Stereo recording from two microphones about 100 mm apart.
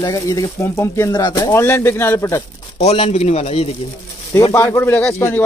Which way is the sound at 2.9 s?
90° left.